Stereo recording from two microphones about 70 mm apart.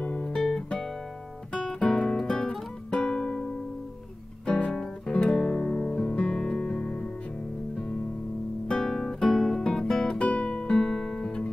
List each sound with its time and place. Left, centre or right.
0.1 s guitar: centre
1.8 s music: centre
4.5 s guitar: centre
4.7 s music: centre
8.6 s guitar: centre